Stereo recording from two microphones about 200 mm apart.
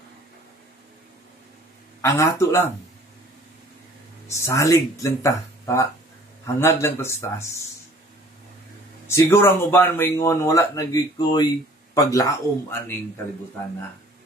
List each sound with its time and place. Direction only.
2.0 s speech: 15° left (ahead or behind)
4.3 s speech: 15° left (ahead or behind)
9.0 s speech: 10° left (ahead or behind)